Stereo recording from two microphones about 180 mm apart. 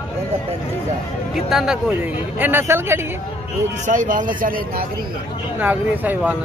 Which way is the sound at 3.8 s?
45° right (ahead or behind).